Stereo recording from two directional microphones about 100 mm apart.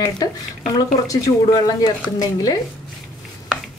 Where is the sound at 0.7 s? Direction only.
35° left (ahead or behind).